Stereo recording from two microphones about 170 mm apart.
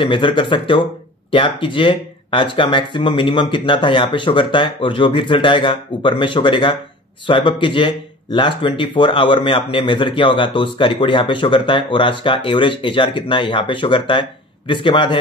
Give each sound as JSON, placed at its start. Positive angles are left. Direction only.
{"t": 0.0, "sound": "speech", "side_deg": 30}